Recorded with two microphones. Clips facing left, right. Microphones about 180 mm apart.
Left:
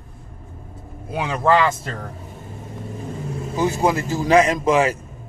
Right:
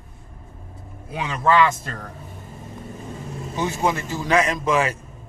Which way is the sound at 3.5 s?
35° left (ahead or behind).